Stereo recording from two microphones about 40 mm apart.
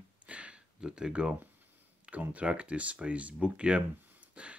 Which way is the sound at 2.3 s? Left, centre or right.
Right.